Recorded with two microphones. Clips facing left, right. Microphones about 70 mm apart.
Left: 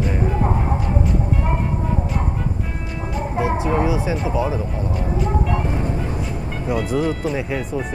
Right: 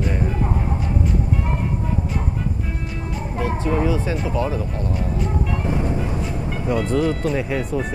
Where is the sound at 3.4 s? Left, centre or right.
Centre.